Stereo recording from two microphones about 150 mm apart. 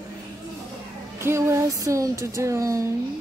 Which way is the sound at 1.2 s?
20° right (ahead or behind).